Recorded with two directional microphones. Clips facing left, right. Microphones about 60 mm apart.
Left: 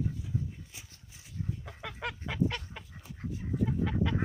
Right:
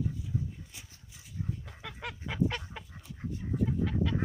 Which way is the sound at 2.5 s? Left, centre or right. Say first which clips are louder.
Right 1 dB; centre.